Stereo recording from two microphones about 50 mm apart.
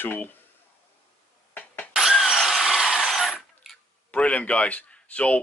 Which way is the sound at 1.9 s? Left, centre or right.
Centre.